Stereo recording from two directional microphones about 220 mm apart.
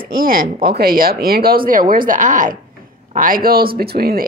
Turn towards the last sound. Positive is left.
turn(degrees=-45)  # may be behind; listen again after turning